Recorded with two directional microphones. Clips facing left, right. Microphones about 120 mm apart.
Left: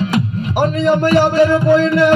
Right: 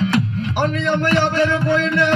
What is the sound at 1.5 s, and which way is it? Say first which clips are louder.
Music: left 6 dB; 40° left (ahead or behind).